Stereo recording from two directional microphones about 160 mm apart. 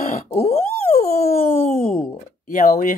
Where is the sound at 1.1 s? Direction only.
65° left (ahead or behind).